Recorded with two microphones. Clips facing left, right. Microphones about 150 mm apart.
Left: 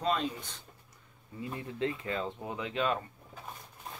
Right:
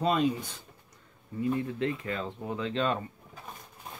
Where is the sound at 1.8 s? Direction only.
25° left (ahead or behind).